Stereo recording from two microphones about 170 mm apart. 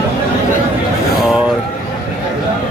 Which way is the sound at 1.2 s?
Centre (ahead or behind).